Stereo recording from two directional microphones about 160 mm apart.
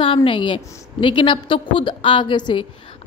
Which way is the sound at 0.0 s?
30° left (ahead or behind).